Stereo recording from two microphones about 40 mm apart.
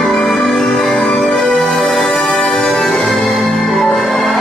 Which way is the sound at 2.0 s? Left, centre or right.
Left.